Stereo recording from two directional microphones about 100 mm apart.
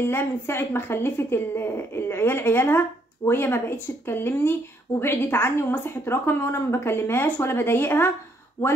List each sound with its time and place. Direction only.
0.0 s a woman's voice: 25° left (ahead or behind)